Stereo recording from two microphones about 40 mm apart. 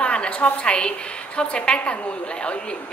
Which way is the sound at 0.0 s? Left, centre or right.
Left.